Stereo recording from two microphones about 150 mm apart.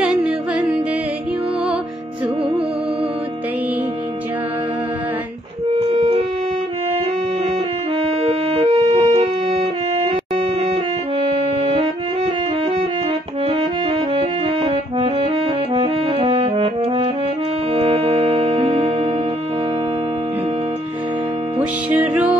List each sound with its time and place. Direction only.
0.1 s music: 5° right (ahead or behind)
5.8 s music: 40° right (ahead or behind)
8.0 s music: 45° right (ahead or behind)
13.5 s music: 40° right (ahead or behind)